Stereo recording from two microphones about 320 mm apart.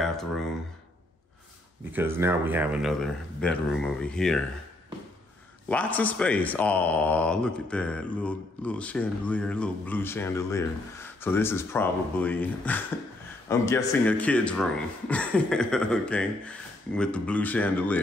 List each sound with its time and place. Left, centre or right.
0.0 s a sound: centre
1.9 s speech: centre
5.7 s speech: centre